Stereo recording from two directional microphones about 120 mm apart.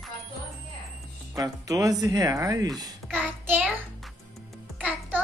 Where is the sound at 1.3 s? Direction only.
30° right (ahead or behind).